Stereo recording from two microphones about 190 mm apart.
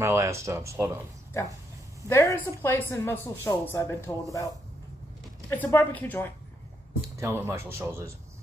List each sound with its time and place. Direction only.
0.0 s speech: 15° right (ahead or behind)
1.3 s speech: 15° left (ahead or behind)
5.6 s speech: 10° left (ahead or behind)
7.2 s speech: 15° right (ahead or behind)